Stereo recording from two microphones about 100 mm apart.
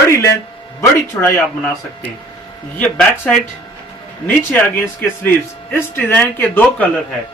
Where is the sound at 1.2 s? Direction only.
15° left (ahead or behind).